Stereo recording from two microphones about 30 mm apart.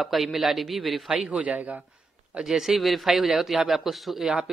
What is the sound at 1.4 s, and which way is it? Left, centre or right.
Speech, right.